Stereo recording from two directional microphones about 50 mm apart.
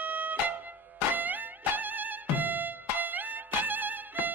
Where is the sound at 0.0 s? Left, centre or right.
Right.